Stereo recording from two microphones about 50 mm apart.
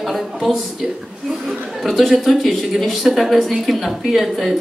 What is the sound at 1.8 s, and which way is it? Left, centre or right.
Speech, centre.